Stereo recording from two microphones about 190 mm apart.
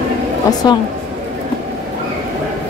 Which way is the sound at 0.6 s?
20° left (ahead or behind).